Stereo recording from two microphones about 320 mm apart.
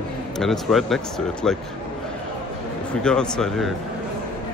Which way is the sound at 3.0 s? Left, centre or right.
Centre.